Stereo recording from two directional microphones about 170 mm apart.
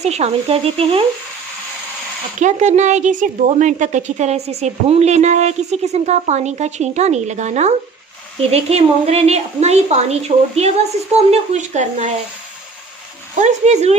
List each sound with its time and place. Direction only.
0.0 s a woman's voice: 40° right (ahead or behind)
2.4 s a woman's voice: 45° right (ahead or behind)
13.4 s a woman's voice: 45° right (ahead or behind)